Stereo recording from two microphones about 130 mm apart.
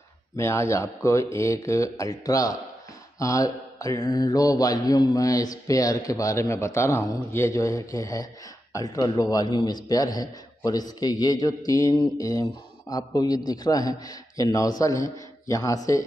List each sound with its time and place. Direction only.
0.4 s a man's voice: 20° left (ahead or behind)